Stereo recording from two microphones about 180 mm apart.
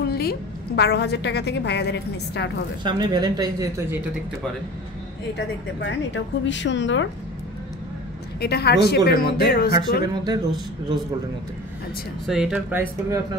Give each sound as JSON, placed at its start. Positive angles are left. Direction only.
{"t": 0.1, "sound": "a woman's voice", "side_deg": 60}
{"t": 2.8, "sound": "speech", "side_deg": -25}
{"t": 5.8, "sound": "a woman's voice", "side_deg": 85}
{"t": 8.4, "sound": "speech", "side_deg": 65}
{"t": 10.0, "sound": "speech", "side_deg": -20}
{"t": 12.3, "sound": "speech", "side_deg": -5}